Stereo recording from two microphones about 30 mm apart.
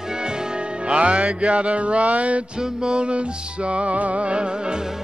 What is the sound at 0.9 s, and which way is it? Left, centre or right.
Music, right.